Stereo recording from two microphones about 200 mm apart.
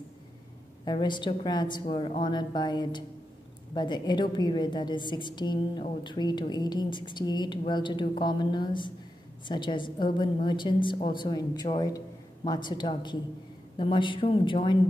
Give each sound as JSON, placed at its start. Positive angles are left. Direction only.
{"t": 0.8, "sound": "a woman's voice", "side_deg": 20}